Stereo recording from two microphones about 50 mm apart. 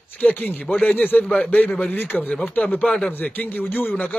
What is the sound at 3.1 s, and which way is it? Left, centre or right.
Speech, left.